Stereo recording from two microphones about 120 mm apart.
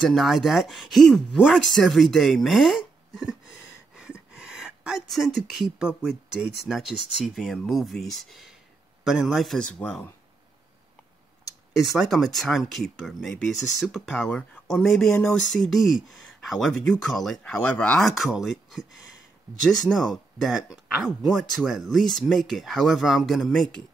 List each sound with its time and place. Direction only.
0.0 s speech: centre (ahead or behind)
3.9 s a sound: 5° right (ahead or behind)
5.8 s speech: 5° right (ahead or behind)
9.8 s speech: 10° left (ahead or behind)
12.0 s speech: centre (ahead or behind)
15.0 s speech: 15° left (ahead or behind)
15.3 s speech: centre (ahead or behind)
19.9 s speech: centre (ahead or behind)